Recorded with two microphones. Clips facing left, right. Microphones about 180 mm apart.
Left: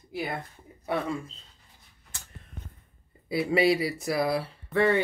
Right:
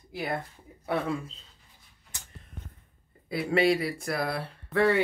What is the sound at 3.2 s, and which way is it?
Speech, 5° left (ahead or behind).